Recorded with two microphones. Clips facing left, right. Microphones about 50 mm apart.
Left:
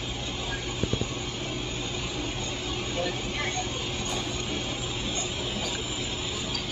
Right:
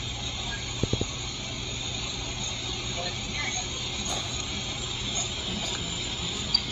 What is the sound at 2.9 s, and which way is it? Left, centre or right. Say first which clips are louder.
Vehicle: left 5 dB; centre.